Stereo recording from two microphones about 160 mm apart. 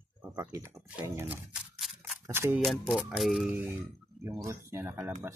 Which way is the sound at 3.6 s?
15° right (ahead or behind).